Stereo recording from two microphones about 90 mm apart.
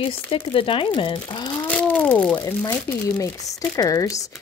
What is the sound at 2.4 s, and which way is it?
Speech, 35° left (ahead or behind).